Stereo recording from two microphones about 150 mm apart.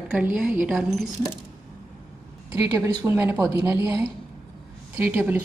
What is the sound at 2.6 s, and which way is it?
A woman's voice, 20° right (ahead or behind).